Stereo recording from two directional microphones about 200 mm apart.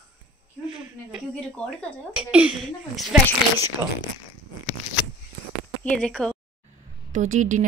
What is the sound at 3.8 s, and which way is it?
Speech, 20° right (ahead or behind).